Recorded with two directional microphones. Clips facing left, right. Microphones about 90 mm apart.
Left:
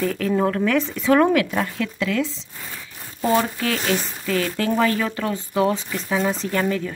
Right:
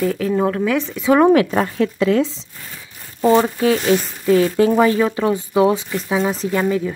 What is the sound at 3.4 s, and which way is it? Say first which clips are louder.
Speech: right 7 dB; 20° right (ahead or behind).